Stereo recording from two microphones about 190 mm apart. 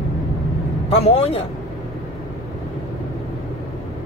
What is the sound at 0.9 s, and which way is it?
Speech, 30° left (ahead or behind).